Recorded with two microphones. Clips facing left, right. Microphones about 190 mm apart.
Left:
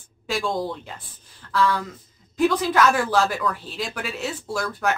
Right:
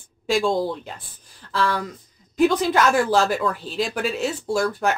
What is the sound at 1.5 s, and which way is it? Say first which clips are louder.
Speech: left 1 dB; 25° right (ahead or behind).